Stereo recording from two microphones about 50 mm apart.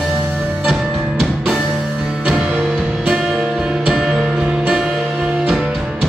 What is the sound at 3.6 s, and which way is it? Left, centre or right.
Music, centre.